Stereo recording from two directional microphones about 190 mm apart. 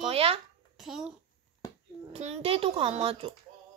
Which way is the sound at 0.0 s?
30° right (ahead or behind).